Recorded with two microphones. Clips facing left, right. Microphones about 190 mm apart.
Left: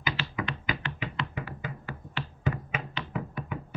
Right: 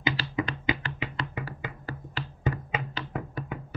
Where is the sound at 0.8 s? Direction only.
35° right (ahead or behind).